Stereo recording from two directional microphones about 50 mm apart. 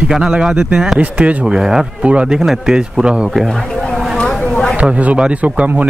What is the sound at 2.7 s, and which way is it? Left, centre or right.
Speech, centre.